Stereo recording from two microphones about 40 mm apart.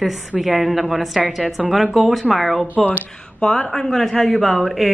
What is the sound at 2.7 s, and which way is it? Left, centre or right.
Speech, right.